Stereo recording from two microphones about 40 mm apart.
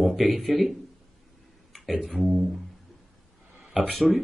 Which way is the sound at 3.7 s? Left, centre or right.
Centre.